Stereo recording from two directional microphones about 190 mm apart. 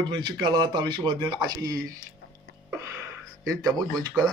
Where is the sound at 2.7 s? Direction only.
15° right (ahead or behind).